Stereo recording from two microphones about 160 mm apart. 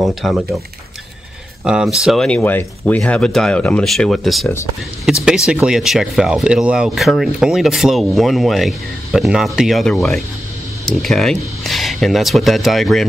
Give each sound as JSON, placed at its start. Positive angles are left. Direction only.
{"t": 0.0, "sound": "speech", "side_deg": 0}
{"t": 1.6, "sound": "speech", "side_deg": -5}